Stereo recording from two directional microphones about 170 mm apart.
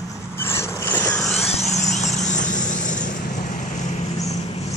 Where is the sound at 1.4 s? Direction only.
40° left (ahead or behind).